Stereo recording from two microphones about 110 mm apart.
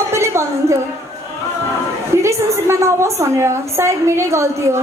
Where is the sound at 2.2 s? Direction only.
25° right (ahead or behind).